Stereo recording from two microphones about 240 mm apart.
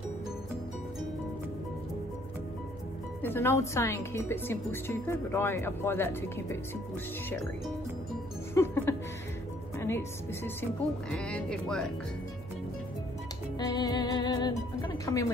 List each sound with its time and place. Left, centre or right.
3.2 s a woman's voice: centre
13.6 s music: centre